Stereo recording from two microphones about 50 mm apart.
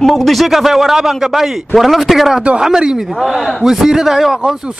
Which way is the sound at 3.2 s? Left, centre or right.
Centre.